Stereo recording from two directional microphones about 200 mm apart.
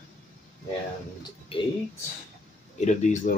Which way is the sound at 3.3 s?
45° left (ahead or behind).